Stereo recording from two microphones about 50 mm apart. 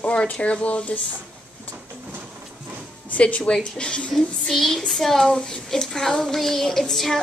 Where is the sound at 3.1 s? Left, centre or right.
Left.